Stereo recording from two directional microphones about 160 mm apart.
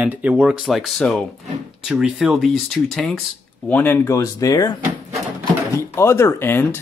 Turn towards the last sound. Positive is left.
turn(degrees=15)  # may be behind; listen again after turning